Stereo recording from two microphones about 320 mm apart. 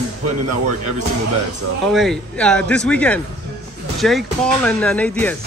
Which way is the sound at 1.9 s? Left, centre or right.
Centre.